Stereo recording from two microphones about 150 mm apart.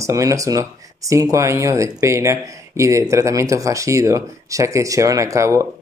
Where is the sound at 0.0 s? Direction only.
20° right (ahead or behind).